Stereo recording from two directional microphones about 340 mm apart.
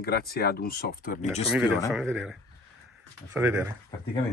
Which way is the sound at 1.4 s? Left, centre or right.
Centre.